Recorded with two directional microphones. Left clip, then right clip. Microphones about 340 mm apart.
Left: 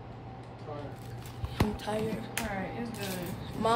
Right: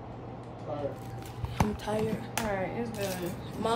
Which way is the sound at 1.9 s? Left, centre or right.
Centre.